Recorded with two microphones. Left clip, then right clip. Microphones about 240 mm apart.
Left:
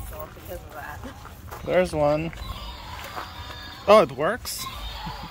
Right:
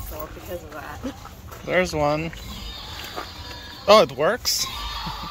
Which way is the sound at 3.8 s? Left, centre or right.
Centre.